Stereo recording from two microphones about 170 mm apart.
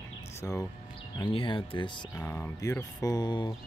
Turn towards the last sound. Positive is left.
turn(degrees=25)  # may be behind; listen again after turning